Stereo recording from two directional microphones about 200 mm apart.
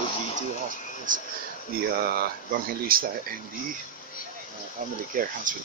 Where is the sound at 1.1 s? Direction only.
40° right (ahead or behind).